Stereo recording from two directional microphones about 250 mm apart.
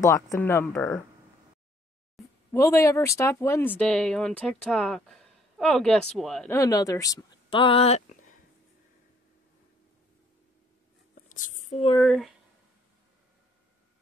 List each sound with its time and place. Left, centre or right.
0.0 s speech: centre
2.5 s speech: centre
11.1 s a sound: left
12.0 s speech: centre